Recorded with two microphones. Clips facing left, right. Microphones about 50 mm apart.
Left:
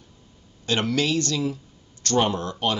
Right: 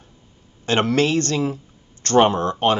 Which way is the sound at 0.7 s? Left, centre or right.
Right.